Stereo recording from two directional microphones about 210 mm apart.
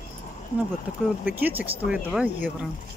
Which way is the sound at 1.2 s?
10° right (ahead or behind).